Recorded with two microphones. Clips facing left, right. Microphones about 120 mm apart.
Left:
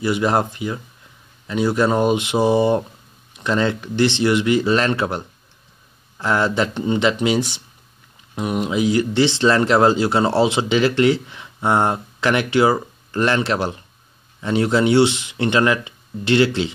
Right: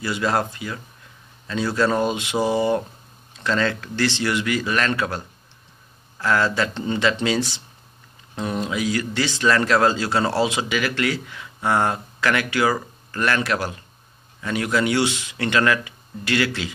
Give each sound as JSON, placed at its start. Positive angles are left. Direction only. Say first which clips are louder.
{"t": 0.0, "sound": "speech", "louder": "left 4 dB", "side_deg": 20}